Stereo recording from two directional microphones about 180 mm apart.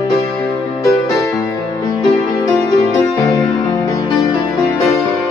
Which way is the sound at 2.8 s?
15° left (ahead or behind).